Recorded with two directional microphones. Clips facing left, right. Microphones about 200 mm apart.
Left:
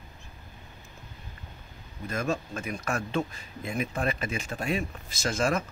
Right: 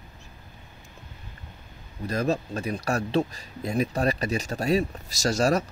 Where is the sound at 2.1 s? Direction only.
35° right (ahead or behind).